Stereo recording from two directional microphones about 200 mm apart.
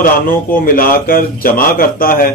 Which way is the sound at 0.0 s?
45° left (ahead or behind).